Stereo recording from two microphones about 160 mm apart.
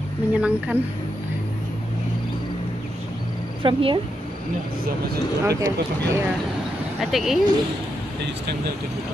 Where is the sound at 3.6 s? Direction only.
30° right (ahead or behind).